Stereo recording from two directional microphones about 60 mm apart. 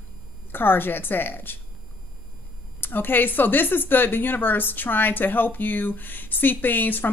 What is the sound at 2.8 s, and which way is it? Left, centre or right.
Speech, left.